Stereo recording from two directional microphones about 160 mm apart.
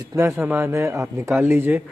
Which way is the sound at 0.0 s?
20° right (ahead or behind).